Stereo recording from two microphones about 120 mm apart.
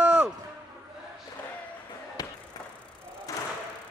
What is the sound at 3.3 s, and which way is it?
Thump, 30° left (ahead or behind).